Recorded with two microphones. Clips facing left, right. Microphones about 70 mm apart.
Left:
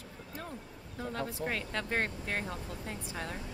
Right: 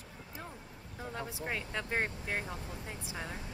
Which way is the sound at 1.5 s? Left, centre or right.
Centre.